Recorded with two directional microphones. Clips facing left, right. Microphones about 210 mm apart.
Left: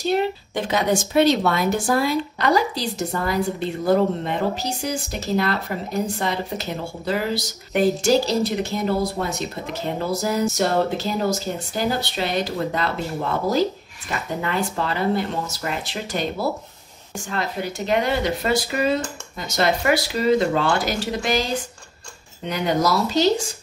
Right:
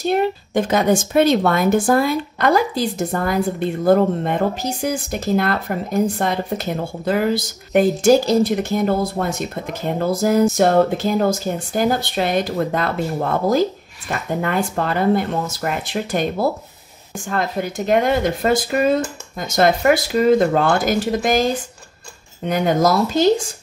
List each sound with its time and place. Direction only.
0.0 s a woman's voice: 50° right (ahead or behind)
22.5 s a woman's voice: 50° right (ahead or behind)